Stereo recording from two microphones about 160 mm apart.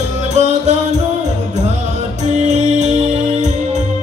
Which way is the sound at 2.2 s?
45° right (ahead or behind).